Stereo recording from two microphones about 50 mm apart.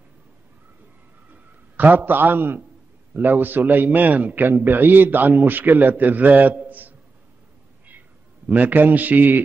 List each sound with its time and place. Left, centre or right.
1.3 s a sound: right
3.1 s a man's voice: right
8.5 s a man's voice: right